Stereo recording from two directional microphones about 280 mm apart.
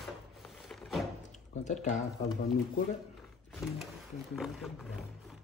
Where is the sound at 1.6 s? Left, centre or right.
Left.